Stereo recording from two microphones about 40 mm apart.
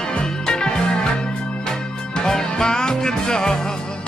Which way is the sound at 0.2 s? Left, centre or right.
Centre.